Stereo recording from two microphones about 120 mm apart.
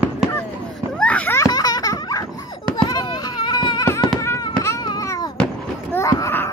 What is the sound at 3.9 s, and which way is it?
Music, 25° left (ahead or behind).